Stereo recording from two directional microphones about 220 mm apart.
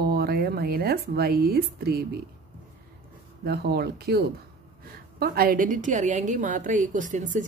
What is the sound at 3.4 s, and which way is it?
Speech, 45° right (ahead or behind).